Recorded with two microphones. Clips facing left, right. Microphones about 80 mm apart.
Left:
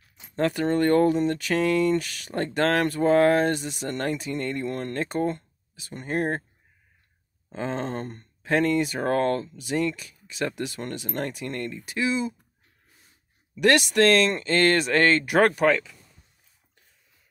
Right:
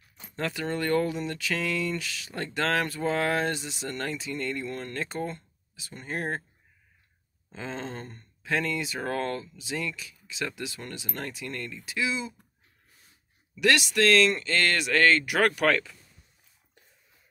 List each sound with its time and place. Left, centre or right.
0.7 s speech: left
3.9 s speech: left
7.5 s speech: left
11.1 s speech: left
13.6 s speech: left